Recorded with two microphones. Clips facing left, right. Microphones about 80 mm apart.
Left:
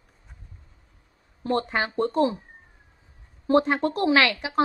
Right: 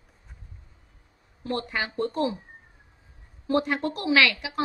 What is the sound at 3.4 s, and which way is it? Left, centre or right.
A woman's voice, left.